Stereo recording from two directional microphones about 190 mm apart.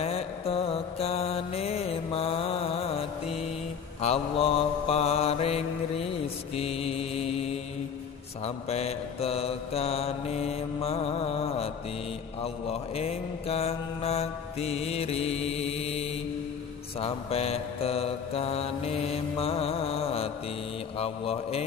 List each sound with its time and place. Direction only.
0.0 s mantra: 30° left (ahead or behind)